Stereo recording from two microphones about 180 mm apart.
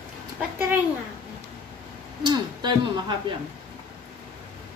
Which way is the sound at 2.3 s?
25° right (ahead or behind).